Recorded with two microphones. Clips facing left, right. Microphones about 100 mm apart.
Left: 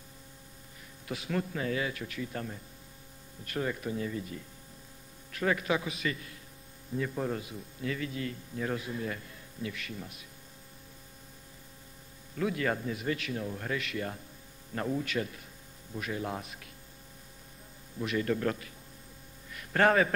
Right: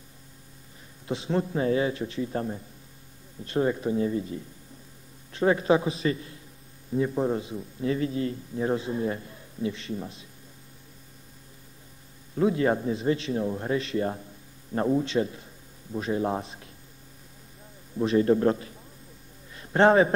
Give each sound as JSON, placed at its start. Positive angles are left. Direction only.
{"t": 1.0, "sound": "a man's voice", "side_deg": -25}
{"t": 12.4, "sound": "a man's voice", "side_deg": -30}
{"t": 17.9, "sound": "a man's voice", "side_deg": -30}
{"t": 19.5, "sound": "a sound", "side_deg": -25}